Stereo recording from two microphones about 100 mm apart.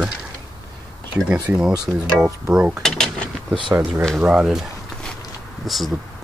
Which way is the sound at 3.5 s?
55° right (ahead or behind).